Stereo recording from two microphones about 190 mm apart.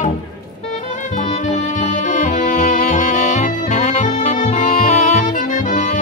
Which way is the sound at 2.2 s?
40° left (ahead or behind).